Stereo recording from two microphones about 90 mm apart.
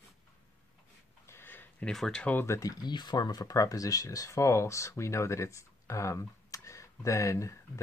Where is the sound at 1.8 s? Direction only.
5° left (ahead or behind).